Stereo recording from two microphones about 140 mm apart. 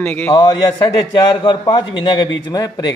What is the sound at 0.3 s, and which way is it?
A man's voice, 35° left (ahead or behind).